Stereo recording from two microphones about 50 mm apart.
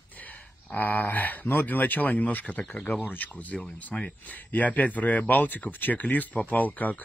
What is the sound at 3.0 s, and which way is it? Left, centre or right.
Speech, left.